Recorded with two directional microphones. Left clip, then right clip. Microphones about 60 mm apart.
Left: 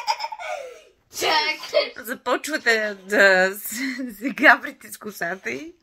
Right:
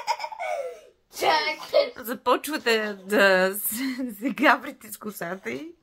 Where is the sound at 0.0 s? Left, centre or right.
Right.